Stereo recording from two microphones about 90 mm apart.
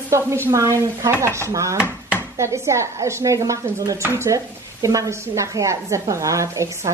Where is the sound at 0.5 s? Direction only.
35° right (ahead or behind).